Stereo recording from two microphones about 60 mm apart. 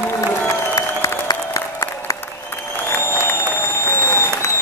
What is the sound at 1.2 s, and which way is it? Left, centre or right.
Applause, left.